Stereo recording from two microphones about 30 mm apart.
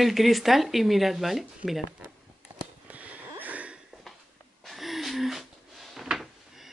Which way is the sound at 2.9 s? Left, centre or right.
Right.